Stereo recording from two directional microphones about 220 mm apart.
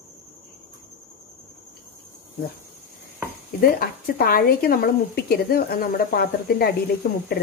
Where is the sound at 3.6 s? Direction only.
45° left (ahead or behind).